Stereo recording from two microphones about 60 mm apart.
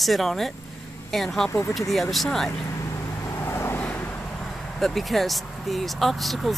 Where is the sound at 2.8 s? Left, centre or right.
Left.